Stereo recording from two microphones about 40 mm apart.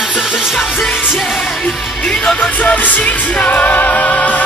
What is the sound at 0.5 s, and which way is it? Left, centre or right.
Music, centre.